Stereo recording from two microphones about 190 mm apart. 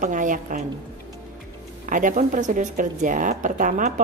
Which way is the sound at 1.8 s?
45° right (ahead or behind).